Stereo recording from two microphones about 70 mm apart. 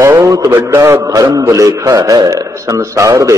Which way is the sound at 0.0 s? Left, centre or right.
Right.